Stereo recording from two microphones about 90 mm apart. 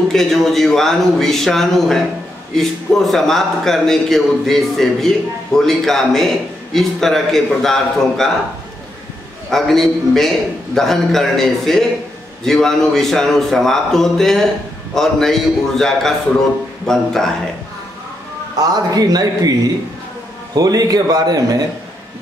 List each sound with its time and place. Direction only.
0.1 s a man's voice: 5° left (ahead or behind)
9.5 s a man's voice: 5° left (ahead or behind)
18.6 s a man's voice: 45° right (ahead or behind)
20.5 s a man's voice: 45° right (ahead or behind)